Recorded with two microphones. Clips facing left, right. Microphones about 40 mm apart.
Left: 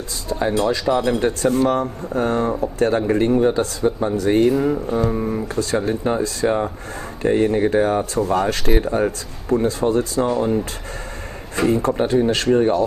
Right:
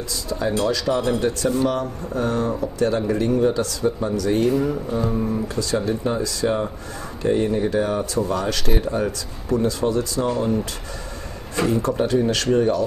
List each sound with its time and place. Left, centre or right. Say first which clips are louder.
0.3 s speech: left 3 dB; left
1.5 s speech: left 3 dB; left
11.5 s speech: left 3 dB; left